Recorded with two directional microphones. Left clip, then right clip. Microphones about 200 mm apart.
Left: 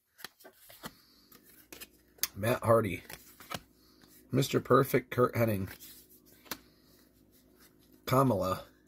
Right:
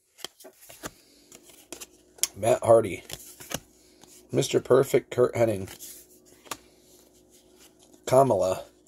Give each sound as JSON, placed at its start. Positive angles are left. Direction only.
{"t": 0.7, "sound": "power windows", "side_deg": -25}
{"t": 2.1, "sound": "speech", "side_deg": 30}
{"t": 4.3, "sound": "speech", "side_deg": 30}
{"t": 8.1, "sound": "speech", "side_deg": 30}